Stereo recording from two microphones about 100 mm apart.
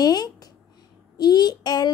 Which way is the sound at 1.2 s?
45° left (ahead or behind).